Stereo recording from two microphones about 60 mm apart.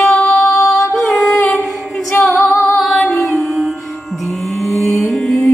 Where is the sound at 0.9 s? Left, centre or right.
Centre.